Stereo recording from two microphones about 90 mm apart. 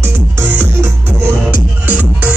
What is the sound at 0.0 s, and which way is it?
Music, 25° right (ahead or behind).